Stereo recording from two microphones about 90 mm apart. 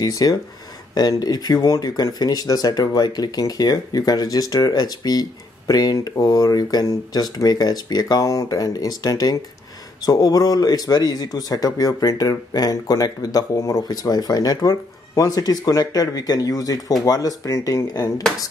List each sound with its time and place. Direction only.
0.0 s speech: 45° left (ahead or behind)